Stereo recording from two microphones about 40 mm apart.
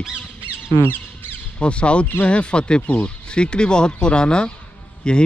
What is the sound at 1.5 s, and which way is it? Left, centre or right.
Speech, left.